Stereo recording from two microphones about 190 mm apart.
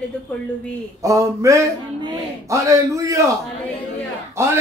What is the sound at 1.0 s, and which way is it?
Speech, 15° right (ahead or behind).